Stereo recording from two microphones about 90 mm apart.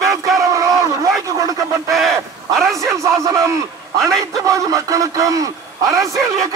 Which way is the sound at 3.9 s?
Centre (ahead or behind).